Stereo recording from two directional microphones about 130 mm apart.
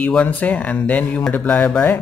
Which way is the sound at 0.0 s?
10° left (ahead or behind).